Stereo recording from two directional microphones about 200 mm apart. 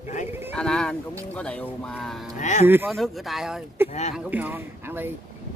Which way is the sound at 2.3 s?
35° left (ahead or behind).